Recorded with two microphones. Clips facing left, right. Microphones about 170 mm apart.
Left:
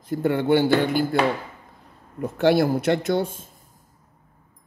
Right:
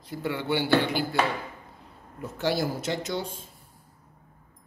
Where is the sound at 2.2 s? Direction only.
60° left (ahead or behind).